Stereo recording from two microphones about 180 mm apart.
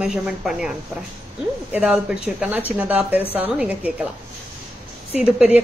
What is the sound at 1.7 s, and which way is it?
Speech, 5° right (ahead or behind).